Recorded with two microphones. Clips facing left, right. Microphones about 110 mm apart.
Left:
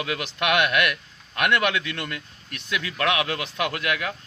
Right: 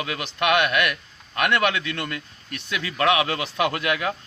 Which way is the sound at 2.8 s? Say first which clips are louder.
Right 3 dB; 25° right (ahead or behind).